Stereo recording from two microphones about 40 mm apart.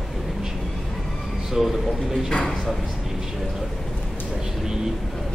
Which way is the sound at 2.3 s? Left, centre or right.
Left.